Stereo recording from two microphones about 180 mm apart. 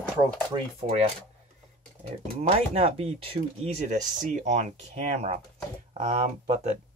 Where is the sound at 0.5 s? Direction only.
30° right (ahead or behind).